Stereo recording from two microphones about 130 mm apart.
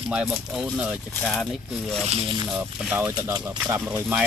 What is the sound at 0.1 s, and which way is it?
Speech, centre (ahead or behind).